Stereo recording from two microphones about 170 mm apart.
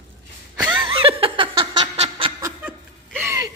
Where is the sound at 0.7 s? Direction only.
30° right (ahead or behind).